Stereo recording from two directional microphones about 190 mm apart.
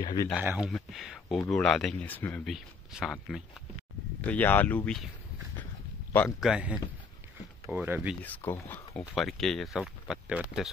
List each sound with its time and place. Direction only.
0.0 s speech: 20° left (ahead or behind)
0.3 s speech: 5° right (ahead or behind)
4.3 s speech: 10° left (ahead or behind)
6.1 s speech: centre (ahead or behind)
8.2 s speech: 10° left (ahead or behind)
9.0 s speech: centre (ahead or behind)